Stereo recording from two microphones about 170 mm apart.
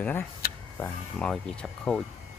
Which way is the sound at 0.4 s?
60° left (ahead or behind).